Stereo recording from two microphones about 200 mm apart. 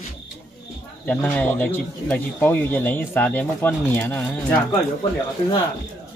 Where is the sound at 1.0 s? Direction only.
5° left (ahead or behind).